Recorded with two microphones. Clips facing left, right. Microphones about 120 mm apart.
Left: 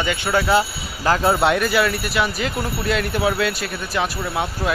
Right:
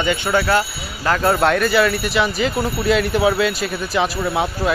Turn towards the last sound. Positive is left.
turn(degrees=-5)  # may be behind; listen again after turning